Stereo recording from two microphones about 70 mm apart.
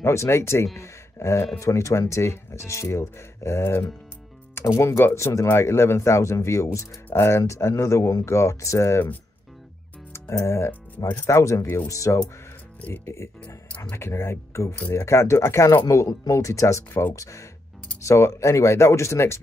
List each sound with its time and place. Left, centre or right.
0.0 s speech: left
10.4 s speech: left
11.6 s speech: left
11.9 s speech: left
12.8 s speech: left
13.9 s speech: left
14.8 s speech: left
15.0 s speech: left